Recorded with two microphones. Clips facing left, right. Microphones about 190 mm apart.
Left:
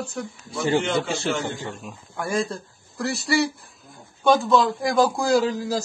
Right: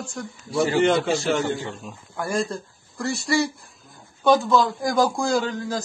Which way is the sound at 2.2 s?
Centre (ahead or behind).